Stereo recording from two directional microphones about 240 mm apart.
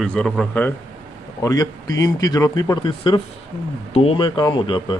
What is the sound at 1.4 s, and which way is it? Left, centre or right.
A man's voice, centre.